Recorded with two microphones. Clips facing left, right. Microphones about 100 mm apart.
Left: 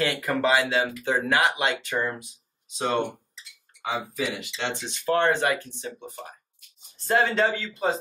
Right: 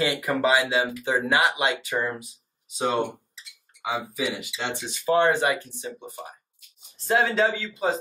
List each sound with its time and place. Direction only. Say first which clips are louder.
0.0 s speech: right 1 dB; 10° right (ahead or behind)
3.3 s a sound: even; 5° right (ahead or behind)
4.1 s speech: right 1 dB; 5° right (ahead or behind)